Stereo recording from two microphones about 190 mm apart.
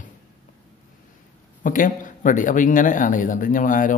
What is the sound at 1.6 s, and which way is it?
Speech, 45° left (ahead or behind).